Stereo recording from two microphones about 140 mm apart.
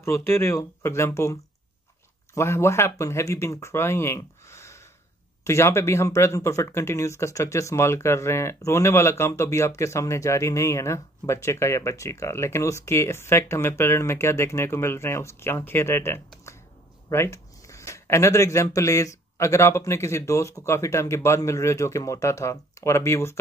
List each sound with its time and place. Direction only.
0.0 s speech: 20° left (ahead or behind)
16.5 s a sound: 20° left (ahead or behind)
17.1 s speech: 20° left (ahead or behind)